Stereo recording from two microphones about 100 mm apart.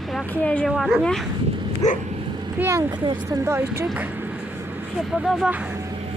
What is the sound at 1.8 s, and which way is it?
Dog, 35° left (ahead or behind).